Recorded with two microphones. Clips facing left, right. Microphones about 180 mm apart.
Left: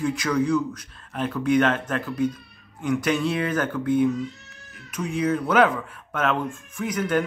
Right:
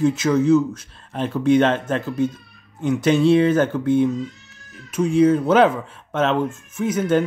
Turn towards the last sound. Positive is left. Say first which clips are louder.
# right 5 dB
turn(degrees=-25)  # may be behind; listen again after turning